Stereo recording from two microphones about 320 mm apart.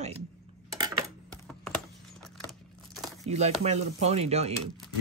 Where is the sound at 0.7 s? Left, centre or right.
Centre.